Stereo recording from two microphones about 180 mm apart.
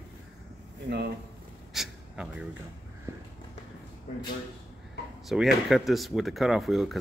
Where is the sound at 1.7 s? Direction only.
5° right (ahead or behind).